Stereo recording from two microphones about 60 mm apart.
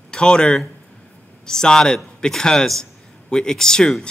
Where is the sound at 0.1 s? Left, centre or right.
Centre.